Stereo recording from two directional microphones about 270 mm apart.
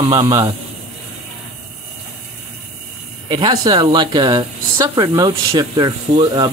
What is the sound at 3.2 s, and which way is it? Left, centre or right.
Speech, centre.